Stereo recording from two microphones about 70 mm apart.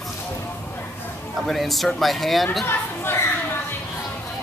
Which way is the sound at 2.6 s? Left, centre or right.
Left.